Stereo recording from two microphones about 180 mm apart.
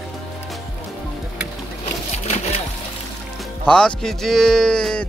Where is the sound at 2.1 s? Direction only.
35° left (ahead or behind).